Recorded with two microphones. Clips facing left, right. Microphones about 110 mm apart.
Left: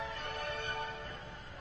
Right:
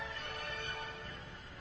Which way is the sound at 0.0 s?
35° left (ahead or behind).